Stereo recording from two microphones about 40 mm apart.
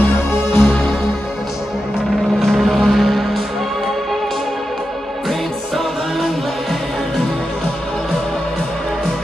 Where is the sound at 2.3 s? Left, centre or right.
Centre.